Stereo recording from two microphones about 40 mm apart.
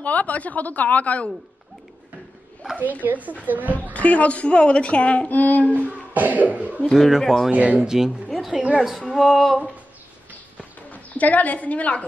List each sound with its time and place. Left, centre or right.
0.0 s a woman's voice: left
2.8 s cough: right
3.9 s a woman's voice: left
5.3 s child singing: left
6.1 s cough: right
7.1 s speech: centre
7.5 s speech: right
7.8 s speech: centre
8.7 s speech: centre
10.6 s speech: left